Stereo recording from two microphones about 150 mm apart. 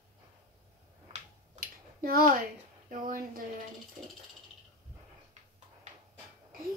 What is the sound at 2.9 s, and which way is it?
Speech, 65° right (ahead or behind).